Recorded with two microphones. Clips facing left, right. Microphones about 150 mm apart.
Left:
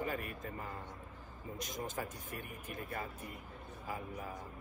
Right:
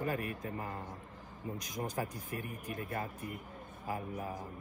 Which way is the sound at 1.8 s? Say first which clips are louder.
Right 5 dB; 45° right (ahead or behind).